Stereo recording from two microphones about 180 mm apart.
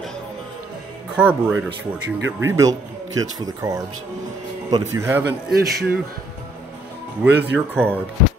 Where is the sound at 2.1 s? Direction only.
90° right.